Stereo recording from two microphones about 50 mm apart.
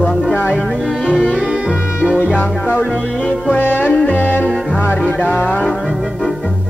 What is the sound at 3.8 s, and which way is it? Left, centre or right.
Music, left.